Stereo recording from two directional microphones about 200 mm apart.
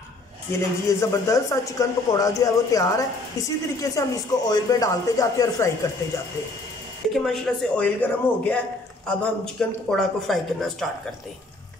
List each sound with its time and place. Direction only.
0.5 s speech: 15° left (ahead or behind)
7.1 s speech: centre (ahead or behind)